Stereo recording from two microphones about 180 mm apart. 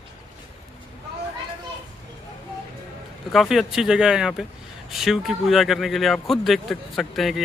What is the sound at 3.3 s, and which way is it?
A man's voice, centre (ahead or behind).